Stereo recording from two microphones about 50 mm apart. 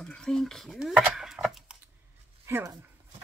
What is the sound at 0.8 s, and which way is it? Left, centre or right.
Speech, centre.